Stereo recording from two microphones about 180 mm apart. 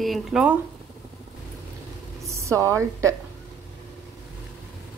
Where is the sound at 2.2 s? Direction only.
15° right (ahead or behind).